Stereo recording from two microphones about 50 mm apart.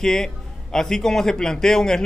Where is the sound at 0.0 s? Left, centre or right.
Centre.